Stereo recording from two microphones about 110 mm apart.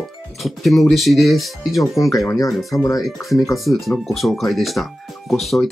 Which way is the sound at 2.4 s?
Centre (ahead or behind).